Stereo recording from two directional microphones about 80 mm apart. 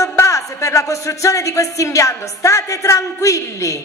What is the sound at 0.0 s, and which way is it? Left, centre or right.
A woman's voice, left.